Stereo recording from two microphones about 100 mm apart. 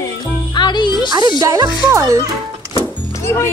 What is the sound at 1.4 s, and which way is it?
Speech, 35° right (ahead or behind).